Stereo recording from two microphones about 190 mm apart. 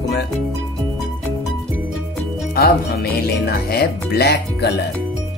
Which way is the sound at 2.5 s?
55° left (ahead or behind).